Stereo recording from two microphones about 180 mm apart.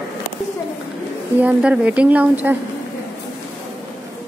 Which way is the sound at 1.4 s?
5° right (ahead or behind).